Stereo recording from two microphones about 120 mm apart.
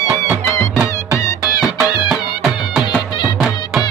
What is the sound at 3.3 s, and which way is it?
Music, centre (ahead or behind).